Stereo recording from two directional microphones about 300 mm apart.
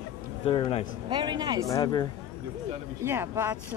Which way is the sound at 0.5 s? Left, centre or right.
Centre.